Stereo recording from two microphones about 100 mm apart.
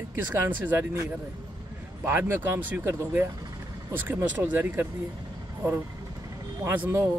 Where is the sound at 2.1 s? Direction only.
25° right (ahead or behind).